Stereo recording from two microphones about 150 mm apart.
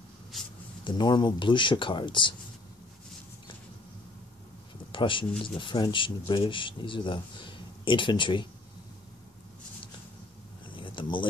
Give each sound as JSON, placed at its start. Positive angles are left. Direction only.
{"t": 0.3, "sound": "writing", "side_deg": 0}
{"t": 0.8, "sound": "speech", "side_deg": 30}
{"t": 4.9, "sound": "speech", "side_deg": 35}
{"t": 10.8, "sound": "a sound", "side_deg": 35}